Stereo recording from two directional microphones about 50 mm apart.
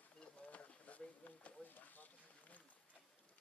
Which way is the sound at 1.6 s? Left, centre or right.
Left.